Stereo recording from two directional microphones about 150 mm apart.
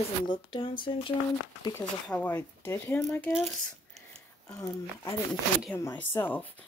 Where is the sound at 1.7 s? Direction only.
10° left (ahead or behind).